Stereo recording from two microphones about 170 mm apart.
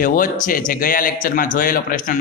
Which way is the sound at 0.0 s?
50° left (ahead or behind).